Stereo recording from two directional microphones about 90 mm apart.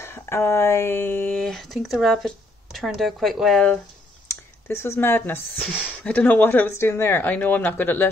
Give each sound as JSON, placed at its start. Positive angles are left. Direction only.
{"t": 0.0, "sound": "speech", "side_deg": 30}
{"t": 1.4, "sound": "speech", "side_deg": 0}
{"t": 4.3, "sound": "speech", "side_deg": 30}